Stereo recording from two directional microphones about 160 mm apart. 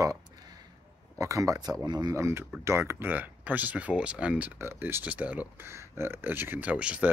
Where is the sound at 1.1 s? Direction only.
20° right (ahead or behind).